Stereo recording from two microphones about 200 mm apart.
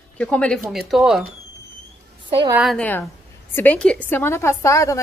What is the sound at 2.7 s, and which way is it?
A woman's voice, 5° left (ahead or behind).